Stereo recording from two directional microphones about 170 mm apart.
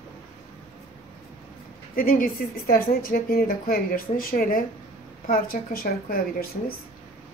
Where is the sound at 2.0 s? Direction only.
55° left (ahead or behind).